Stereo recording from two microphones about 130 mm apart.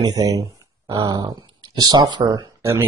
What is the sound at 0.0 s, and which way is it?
Speech, 30° right (ahead or behind).